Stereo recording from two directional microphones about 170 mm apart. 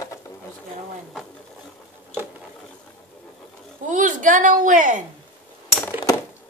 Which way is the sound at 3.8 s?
50° right (ahead or behind).